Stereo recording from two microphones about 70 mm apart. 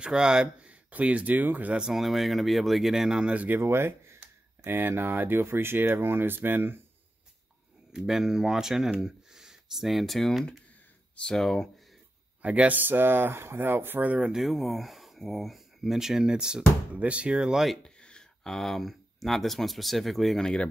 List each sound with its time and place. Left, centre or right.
0.0 s speech: centre
1.8 s speech: centre
3.4 s speech: right
7.9 s speech: centre
12.4 s speech: right
14.3 s speech: centre
17.8 s speech: centre